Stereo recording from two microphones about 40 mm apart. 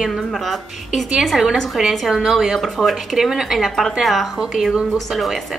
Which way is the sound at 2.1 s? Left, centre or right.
Centre.